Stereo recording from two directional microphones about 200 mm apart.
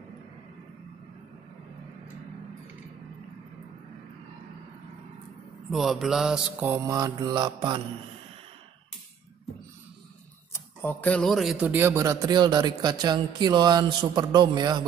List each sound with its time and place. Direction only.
5.7 s mantra: centre (ahead or behind)
6.7 s speech: 15° right (ahead or behind)
10.5 s speech: 10° left (ahead or behind); by 14.9 s 20° right (ahead or behind)